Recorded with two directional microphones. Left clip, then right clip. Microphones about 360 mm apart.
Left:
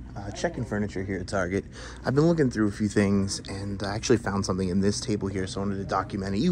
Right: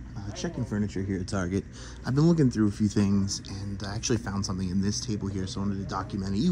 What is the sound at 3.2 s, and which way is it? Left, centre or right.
Speech, centre.